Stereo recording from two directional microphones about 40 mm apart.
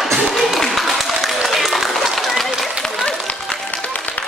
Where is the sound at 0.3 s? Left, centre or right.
Centre.